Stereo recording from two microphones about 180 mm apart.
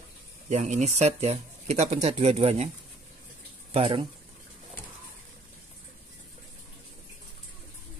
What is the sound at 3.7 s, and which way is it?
Speech, 30° right (ahead or behind).